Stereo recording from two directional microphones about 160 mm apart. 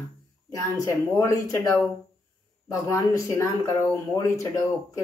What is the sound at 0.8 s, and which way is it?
Speech, 20° left (ahead or behind).